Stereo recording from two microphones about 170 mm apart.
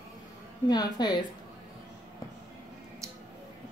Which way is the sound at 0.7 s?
25° left (ahead or behind).